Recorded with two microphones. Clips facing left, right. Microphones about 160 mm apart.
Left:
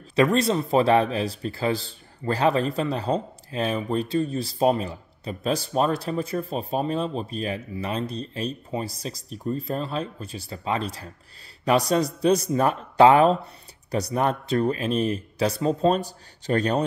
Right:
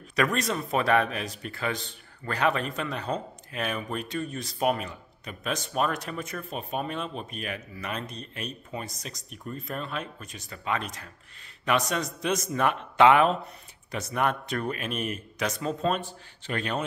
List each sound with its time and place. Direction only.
0.1 s speech: 25° left (ahead or behind)